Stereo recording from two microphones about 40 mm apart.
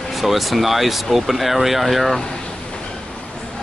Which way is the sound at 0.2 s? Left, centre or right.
Centre.